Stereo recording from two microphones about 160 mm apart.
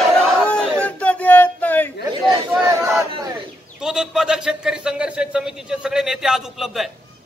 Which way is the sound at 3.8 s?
5° right (ahead or behind).